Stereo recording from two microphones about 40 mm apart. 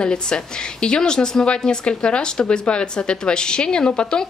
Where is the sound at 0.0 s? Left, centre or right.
Left.